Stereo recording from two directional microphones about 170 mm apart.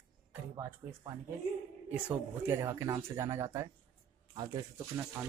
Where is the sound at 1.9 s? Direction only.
10° right (ahead or behind).